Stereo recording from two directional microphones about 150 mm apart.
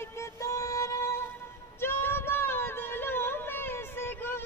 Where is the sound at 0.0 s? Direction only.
20° left (ahead or behind).